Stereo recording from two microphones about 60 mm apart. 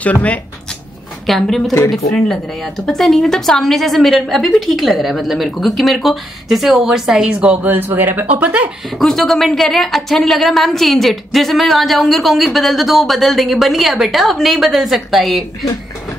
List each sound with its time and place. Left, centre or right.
0.0 s speech: left
1.2 s a woman's voice: centre
7.6 s speech: right
8.3 s speech: right
8.9 s a woman's voice: centre